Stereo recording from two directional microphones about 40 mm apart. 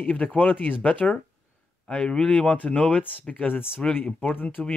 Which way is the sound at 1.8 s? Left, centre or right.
Left.